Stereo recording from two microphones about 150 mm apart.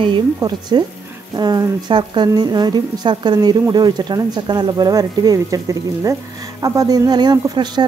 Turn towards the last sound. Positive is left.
turn(degrees=-30)  # may be behind; listen again after turning